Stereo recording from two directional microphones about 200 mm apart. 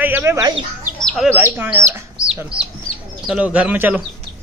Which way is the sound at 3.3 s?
5° right (ahead or behind).